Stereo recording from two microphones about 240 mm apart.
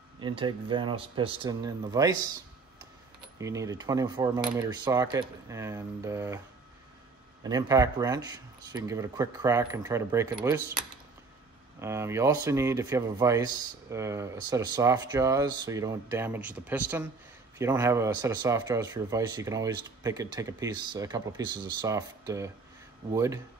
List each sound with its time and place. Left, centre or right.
0.2 s speech: right
3.3 s speech: centre
7.4 s speech: centre